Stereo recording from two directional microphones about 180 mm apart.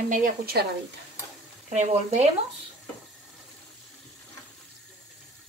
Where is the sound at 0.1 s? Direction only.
55° right (ahead or behind).